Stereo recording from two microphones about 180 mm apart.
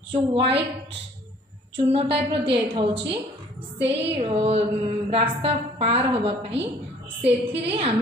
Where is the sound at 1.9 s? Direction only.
30° right (ahead or behind).